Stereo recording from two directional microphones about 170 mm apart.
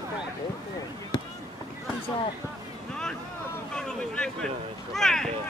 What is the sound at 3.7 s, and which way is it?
Vehicle, 5° left (ahead or behind).